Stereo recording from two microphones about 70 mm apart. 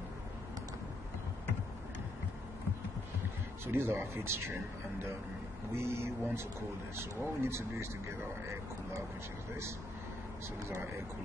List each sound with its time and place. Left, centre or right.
3.6 s speech: right